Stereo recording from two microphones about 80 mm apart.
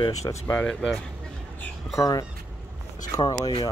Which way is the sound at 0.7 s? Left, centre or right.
Centre.